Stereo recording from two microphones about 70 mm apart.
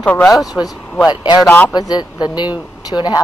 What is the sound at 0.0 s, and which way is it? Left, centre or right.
Speech, centre.